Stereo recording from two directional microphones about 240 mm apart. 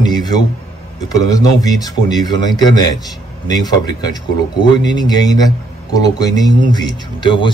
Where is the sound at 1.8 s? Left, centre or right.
Centre.